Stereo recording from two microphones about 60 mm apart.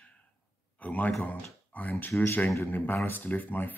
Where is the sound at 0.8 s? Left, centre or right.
Left.